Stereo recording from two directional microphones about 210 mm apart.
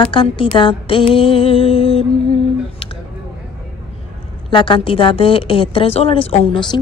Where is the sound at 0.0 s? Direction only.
20° left (ahead or behind).